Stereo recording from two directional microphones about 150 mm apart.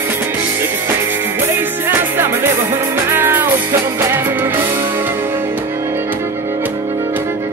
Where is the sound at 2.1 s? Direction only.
15° right (ahead or behind).